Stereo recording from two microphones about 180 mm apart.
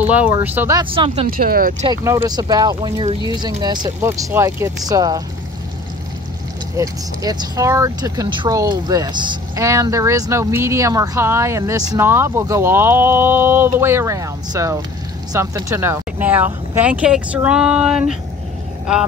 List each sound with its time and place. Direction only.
0.0 s speech: 10° right (ahead or behind)
0.7 s speech: 30° right (ahead or behind)
1.3 s speech: 55° right (ahead or behind)
1.9 s speech: 20° right (ahead or behind)
6.8 s speech: 20° right (ahead or behind); by 18.1 s 5° right (ahead or behind)